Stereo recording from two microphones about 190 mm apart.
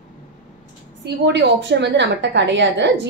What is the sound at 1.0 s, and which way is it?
A woman's voice, 65° right (ahead or behind).